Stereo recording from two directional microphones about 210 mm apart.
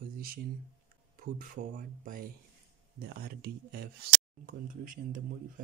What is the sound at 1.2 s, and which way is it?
Speech, 40° right (ahead or behind).